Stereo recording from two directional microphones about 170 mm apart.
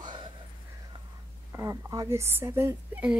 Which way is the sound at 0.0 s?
25° right (ahead or behind).